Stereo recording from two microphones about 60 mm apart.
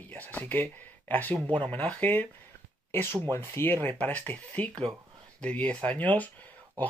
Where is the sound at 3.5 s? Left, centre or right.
Left.